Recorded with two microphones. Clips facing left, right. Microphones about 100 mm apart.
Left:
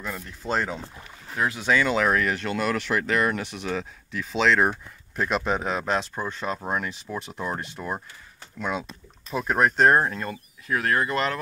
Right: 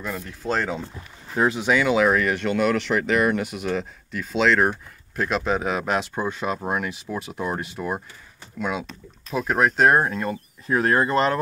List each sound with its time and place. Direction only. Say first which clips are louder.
0.0 s speech: right 4 dB; centre (ahead or behind)
1.3 s speech: right 3 dB; 25° right (ahead or behind)
10.7 s speech: right 4 dB; 25° right (ahead or behind)